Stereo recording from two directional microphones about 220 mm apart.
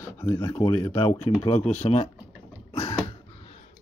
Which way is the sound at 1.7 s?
30° left (ahead or behind).